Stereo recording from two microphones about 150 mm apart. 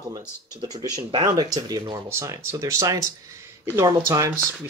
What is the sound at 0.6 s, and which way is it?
Speech, 25° right (ahead or behind).